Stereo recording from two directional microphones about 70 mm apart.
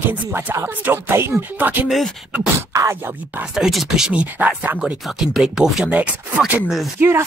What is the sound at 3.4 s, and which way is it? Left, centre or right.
Speech, centre.